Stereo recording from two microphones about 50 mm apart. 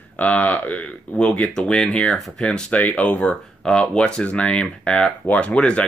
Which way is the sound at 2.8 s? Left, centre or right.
Left.